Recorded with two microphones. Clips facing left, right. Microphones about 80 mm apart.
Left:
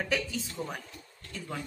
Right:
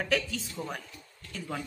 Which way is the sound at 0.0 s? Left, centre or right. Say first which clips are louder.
Right 2 dB; centre.